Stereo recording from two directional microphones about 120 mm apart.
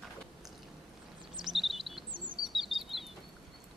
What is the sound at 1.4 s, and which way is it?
Chirp, centre (ahead or behind).